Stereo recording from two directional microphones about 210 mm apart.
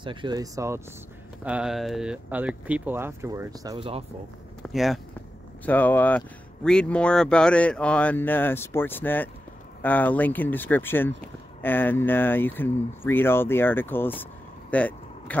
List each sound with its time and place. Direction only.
0.0 s speech: 20° right (ahead or behind)
4.7 s speech: centre (ahead or behind)
14.7 s vehicle: 5° left (ahead or behind)